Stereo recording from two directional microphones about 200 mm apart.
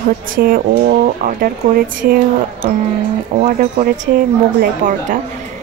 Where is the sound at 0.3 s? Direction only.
45° right (ahead or behind).